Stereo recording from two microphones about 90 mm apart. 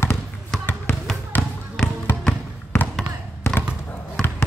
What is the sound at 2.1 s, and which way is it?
Music, 25° left (ahead or behind).